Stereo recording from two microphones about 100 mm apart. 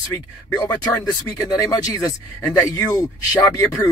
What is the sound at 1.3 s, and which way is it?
Speech, 40° left (ahead or behind).